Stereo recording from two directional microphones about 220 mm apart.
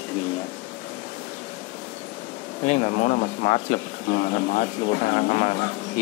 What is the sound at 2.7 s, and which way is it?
Speech, 35° left (ahead or behind).